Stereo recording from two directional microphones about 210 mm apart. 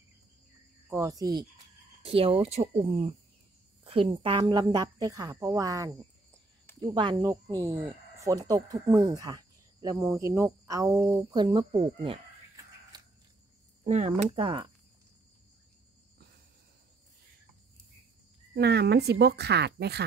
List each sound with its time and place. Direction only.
0.8 s a woman's voice: 15° right (ahead or behind)
13.8 s speech: 35° right (ahead or behind)
18.5 s speech: 50° right (ahead or behind)